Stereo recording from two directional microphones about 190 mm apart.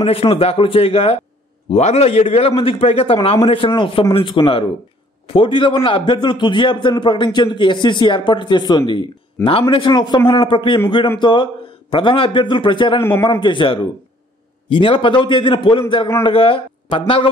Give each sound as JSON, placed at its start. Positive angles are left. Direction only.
{"t": 0.0, "sound": "a man's voice", "side_deg": 30}